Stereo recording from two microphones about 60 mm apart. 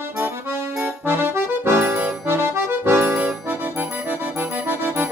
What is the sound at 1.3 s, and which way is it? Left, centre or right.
Music, right.